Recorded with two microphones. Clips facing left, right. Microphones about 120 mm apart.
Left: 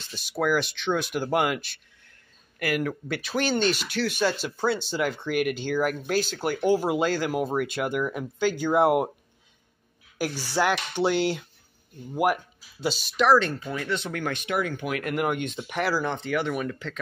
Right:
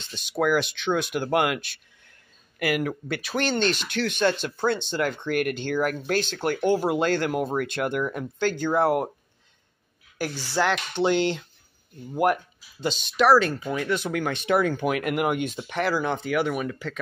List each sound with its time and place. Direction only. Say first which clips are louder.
0.0 s speech: right 2 dB; 5° left (ahead or behind)
2.6 s speech: right 2 dB; 10° right (ahead or behind); by 9.1 s 15° left (ahead or behind)
10.1 s speech: even; 10° left (ahead or behind)
13.6 s speech: right 3 dB; 15° right (ahead or behind)
14.3 s speech: right 7 dB; 30° right (ahead or behind)
15.0 s speech: right 2 dB; 10° right (ahead or behind)